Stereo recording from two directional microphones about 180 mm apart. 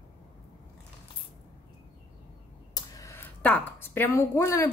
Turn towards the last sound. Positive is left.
turn(degrees=15)  # may be behind; listen again after turning